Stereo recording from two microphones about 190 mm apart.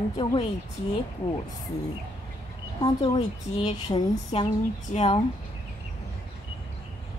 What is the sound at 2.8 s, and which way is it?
A woman's voice, 20° left (ahead or behind).